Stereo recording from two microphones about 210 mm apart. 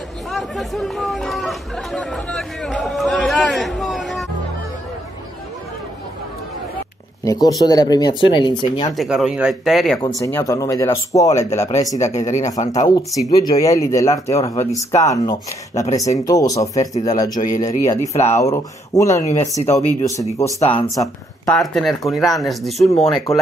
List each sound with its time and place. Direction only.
0.3 s chatter: centre (ahead or behind)
7.2 s speech: 15° left (ahead or behind)
8.9 s speech: centre (ahead or behind)
9.9 s speech: 15° left (ahead or behind)
12.4 s speech: 35° left (ahead or behind)
12.8 s speech: 20° left (ahead or behind)
21.5 s speech: centre (ahead or behind)